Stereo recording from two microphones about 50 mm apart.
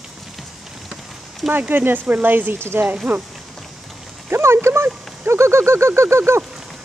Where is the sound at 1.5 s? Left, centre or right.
Right.